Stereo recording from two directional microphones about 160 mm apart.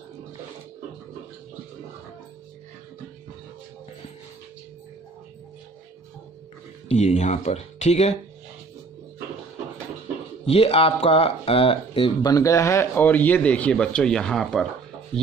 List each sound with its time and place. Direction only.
6.9 s speech: 45° left (ahead or behind)
10.4 s speech: 40° left (ahead or behind); by 14.7 s centre (ahead or behind)